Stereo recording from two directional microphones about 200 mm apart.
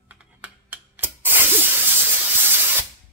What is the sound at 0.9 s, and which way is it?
Spray, 10° right (ahead or behind).